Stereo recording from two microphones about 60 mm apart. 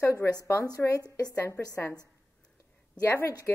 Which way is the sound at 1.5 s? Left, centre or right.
Left.